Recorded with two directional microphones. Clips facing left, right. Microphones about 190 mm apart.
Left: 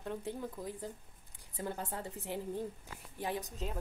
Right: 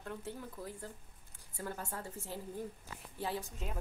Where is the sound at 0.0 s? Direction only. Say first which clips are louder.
Left 4 dB; 20° left (ahead or behind).